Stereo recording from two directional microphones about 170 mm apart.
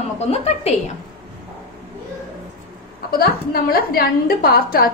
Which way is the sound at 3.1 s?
60° left (ahead or behind).